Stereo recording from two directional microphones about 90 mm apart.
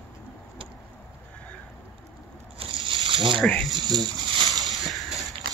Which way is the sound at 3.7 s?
50° right (ahead or behind).